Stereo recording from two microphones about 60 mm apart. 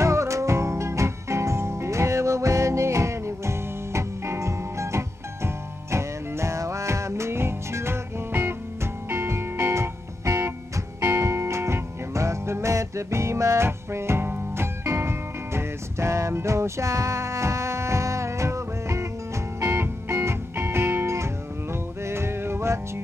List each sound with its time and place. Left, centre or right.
0.0 s music: right
19.6 s music: right